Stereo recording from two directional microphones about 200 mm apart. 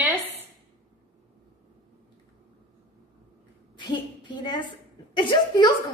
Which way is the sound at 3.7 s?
25° left (ahead or behind).